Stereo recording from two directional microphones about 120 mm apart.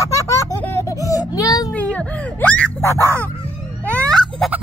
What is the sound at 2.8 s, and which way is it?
Crow, 20° left (ahead or behind).